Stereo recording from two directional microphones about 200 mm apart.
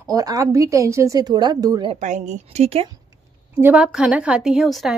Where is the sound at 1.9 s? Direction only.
35° right (ahead or behind).